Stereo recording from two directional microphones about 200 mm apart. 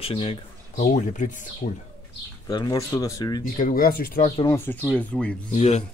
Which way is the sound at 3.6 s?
45° left (ahead or behind).